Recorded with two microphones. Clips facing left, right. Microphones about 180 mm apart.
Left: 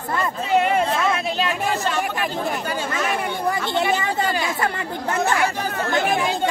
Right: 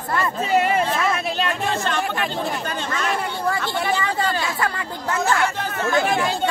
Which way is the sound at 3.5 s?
20° left (ahead or behind).